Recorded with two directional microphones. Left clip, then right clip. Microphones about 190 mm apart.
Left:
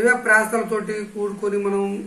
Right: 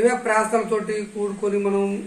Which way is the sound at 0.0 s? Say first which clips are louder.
Left 3 dB; 5° right (ahead or behind).